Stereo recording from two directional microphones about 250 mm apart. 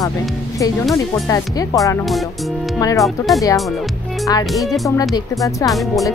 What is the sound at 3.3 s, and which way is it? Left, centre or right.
Speech, centre.